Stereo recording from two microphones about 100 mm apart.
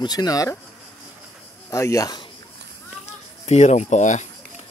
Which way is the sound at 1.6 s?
30° left (ahead or behind).